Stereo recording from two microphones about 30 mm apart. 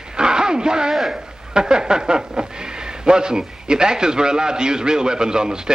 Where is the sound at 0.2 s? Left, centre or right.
Right.